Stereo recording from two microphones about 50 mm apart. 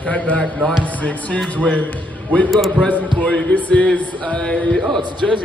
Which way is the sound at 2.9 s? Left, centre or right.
Left.